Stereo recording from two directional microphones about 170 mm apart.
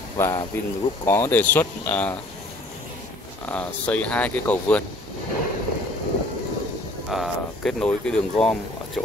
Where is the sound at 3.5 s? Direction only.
10° left (ahead or behind).